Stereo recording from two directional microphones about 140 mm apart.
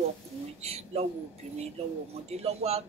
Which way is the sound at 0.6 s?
50° right (ahead or behind).